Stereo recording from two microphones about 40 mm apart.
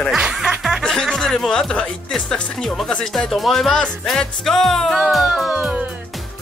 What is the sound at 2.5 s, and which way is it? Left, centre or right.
Music, centre.